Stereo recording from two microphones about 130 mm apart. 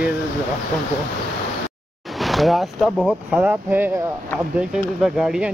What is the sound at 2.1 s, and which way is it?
Speech, centre (ahead or behind).